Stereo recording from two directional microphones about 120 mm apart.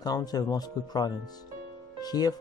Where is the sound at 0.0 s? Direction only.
30° left (ahead or behind).